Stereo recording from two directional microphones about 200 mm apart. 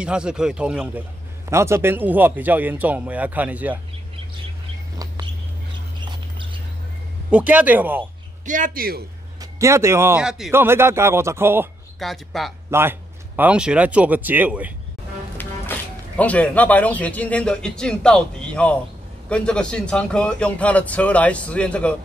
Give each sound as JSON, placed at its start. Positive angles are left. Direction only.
{"t": 0.0, "sound": "a man's voice", "side_deg": -5}
{"t": 4.9, "sound": "bird", "side_deg": -15}
{"t": 5.9, "sound": "a sound", "side_deg": -25}
{"t": 7.2, "sound": "speech", "side_deg": -5}
{"t": 8.5, "sound": "a man's voice", "side_deg": -40}
{"t": 9.4, "sound": "speech", "side_deg": -15}
{"t": 12.0, "sound": "a man's voice", "side_deg": 0}
{"t": 15.4, "sound": "music", "side_deg": 10}
{"t": 16.2, "sound": "a man's voice", "side_deg": 5}